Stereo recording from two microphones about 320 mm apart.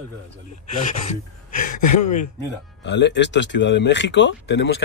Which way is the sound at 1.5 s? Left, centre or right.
Left.